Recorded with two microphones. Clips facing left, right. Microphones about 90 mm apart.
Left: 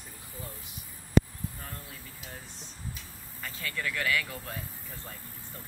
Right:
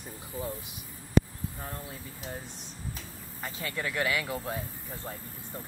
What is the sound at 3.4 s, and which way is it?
Speech, 20° right (ahead or behind).